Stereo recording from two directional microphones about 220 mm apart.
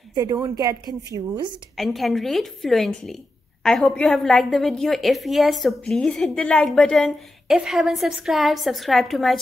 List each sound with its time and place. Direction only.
0.1 s a woman's voice: 20° right (ahead or behind)
1.8 s a woman's voice: centre (ahead or behind)